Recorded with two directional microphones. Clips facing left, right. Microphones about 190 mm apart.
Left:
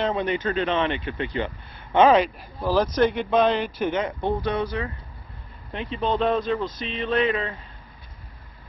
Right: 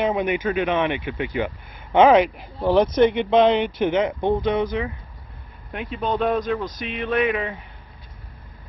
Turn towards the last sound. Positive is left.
turn(degrees=-15)  # may be behind; listen again after turning